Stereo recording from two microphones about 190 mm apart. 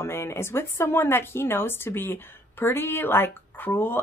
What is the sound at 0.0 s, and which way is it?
Speech, 15° left (ahead or behind).